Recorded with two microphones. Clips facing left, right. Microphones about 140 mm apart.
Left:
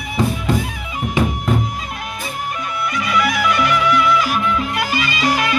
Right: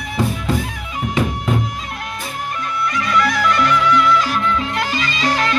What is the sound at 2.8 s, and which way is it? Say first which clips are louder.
Music: right 1 dB; 5° left (ahead or behind).